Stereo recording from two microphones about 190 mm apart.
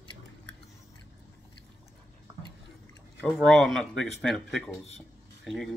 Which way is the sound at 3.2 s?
Centre (ahead or behind).